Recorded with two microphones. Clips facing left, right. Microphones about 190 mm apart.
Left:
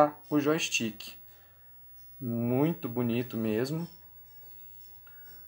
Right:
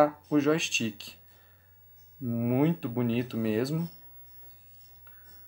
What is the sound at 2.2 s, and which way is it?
Speech, centre (ahead or behind).